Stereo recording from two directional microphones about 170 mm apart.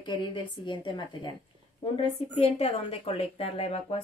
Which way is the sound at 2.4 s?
35° left (ahead or behind).